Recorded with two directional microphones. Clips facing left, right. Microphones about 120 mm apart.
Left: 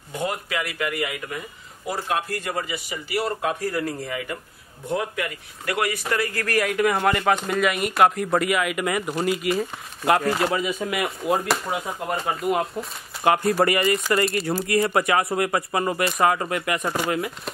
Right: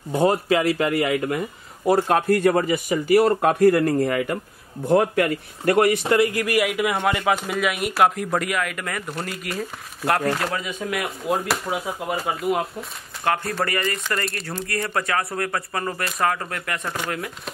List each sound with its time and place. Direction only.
0.1 s speech: 35° right (ahead or behind)
2.0 s speech: 55° right (ahead or behind)
5.9 s speech: 25° right (ahead or behind); by 12.8 s centre (ahead or behind)
13.2 s speech: 15° left (ahead or behind)
14.9 s speech: 15° left (ahead or behind)
16.0 s speech: centre (ahead or behind)